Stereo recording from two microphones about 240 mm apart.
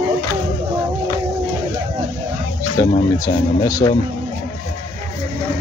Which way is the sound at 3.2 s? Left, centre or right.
Centre.